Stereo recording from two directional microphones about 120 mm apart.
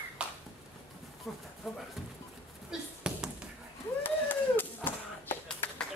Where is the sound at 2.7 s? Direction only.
5° right (ahead or behind).